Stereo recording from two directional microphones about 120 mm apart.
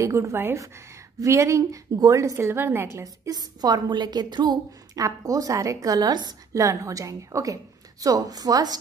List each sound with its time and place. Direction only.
0.0 s a woman's voice: 25° right (ahead or behind)
3.0 s a woman's voice: 35° right (ahead or behind)